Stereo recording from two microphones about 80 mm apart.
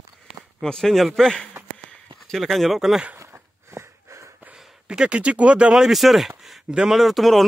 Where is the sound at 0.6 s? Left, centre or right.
Centre.